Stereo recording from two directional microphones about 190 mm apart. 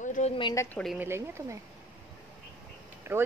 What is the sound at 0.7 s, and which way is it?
Speech, centre (ahead or behind).